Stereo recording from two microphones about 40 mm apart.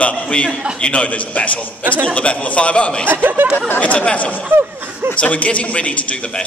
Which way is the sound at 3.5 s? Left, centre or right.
Left.